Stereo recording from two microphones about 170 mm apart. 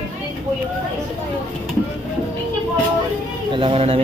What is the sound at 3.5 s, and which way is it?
Speech, 35° right (ahead or behind).